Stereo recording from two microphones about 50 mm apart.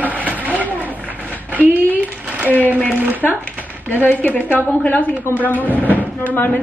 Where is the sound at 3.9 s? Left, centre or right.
Left.